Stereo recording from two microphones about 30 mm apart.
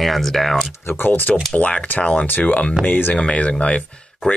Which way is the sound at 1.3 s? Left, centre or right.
Left.